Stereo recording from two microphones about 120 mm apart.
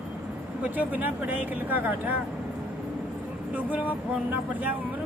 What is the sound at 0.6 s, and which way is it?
Speech, 15° right (ahead or behind).